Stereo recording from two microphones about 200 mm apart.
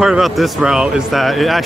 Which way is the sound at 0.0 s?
Centre (ahead or behind).